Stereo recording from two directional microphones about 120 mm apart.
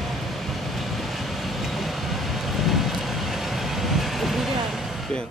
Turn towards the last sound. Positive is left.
turn(degrees=0)  # may be behind; listen again after turning